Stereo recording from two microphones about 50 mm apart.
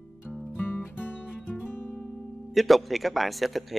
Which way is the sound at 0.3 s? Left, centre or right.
Left.